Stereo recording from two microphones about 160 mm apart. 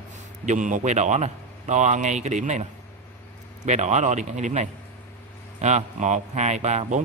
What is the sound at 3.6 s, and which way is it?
A man's voice, 45° right (ahead or behind).